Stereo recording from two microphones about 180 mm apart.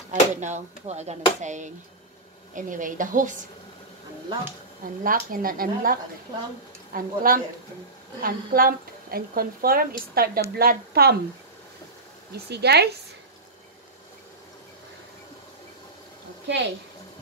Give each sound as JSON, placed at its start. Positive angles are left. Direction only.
{"t": 0.1, "sound": "speech", "side_deg": -40}
{"t": 5.0, "sound": "a woman's voice", "side_deg": -50}
{"t": 12.4, "sound": "a woman's voice", "side_deg": -65}
{"t": 16.4, "sound": "a woman's voice", "side_deg": -75}